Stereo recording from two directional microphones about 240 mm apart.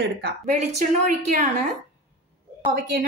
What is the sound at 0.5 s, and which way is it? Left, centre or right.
Speech, right.